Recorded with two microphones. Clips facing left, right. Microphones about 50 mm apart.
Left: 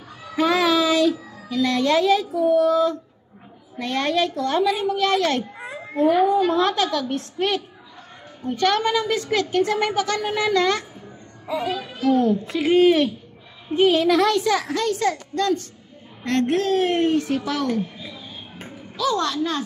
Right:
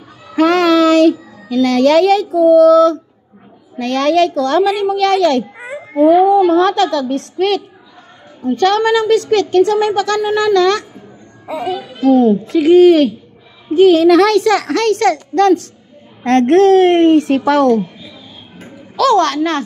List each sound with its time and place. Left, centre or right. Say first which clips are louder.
0.4 s a child's voice: right 8 dB; right
5.5 s babbling: right 6 dB; right
6.2 s a woman's voice: right 8 dB; right
8.5 s a woman's voice: right 8 dB; right
11.4 s a woman's voice: right 5 dB; right
18.9 s speech: right 10 dB; right